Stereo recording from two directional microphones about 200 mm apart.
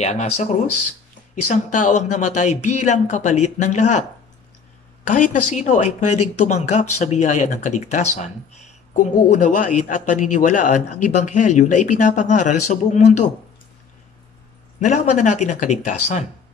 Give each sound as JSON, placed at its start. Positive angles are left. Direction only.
{"t": 0.0, "sound": "a man's voice", "side_deg": 35}
{"t": 5.0, "sound": "a man's voice", "side_deg": 40}
{"t": 14.8, "sound": "a man's voice", "side_deg": 35}